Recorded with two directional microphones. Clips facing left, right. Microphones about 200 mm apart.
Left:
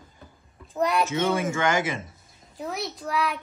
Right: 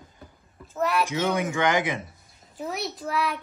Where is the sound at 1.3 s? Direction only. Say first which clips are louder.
Even; 15° right (ahead or behind).